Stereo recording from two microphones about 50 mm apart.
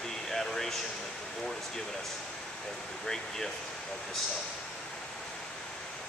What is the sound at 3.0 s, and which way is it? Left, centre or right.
Speech, centre.